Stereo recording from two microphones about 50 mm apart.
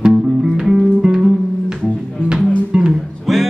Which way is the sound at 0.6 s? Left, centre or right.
Centre.